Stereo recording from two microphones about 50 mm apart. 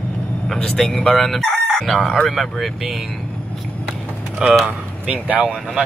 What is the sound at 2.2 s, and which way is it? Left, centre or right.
Speech, centre.